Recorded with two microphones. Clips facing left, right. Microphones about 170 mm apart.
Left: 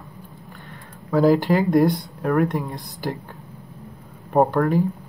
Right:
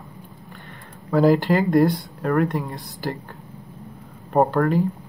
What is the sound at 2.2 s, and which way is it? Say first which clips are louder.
Speech: left 1 dB; centre (ahead or behind).